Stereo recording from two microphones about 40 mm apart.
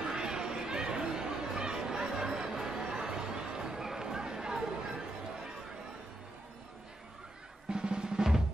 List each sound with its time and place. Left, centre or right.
0.0 s chatter: centre
7.7 s drum: right